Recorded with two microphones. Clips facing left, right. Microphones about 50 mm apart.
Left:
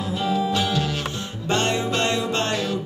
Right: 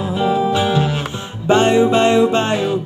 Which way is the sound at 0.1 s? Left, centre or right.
Right.